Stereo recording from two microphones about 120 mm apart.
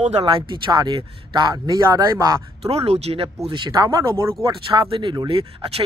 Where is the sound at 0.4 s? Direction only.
35° right (ahead or behind).